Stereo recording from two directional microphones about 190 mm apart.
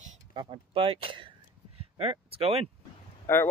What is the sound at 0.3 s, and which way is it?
Speech, 25° right (ahead or behind).